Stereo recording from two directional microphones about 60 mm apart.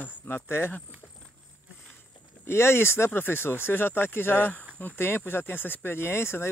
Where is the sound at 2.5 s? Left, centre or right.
Left.